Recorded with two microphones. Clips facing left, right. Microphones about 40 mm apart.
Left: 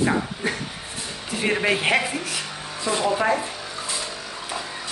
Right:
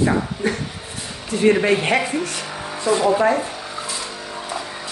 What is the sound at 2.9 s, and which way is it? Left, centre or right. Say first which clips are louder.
Speech: right 6 dB; centre.